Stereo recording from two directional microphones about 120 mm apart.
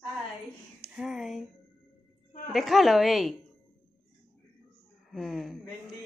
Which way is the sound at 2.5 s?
Centre (ahead or behind).